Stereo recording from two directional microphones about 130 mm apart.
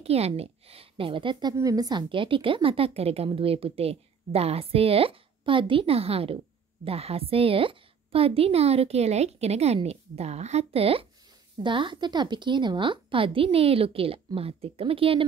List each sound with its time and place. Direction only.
0.0 s a woman's voice: 50° right (ahead or behind)
1.5 s a woman's voice: 25° right (ahead or behind); by 15.2 s 45° right (ahead or behind)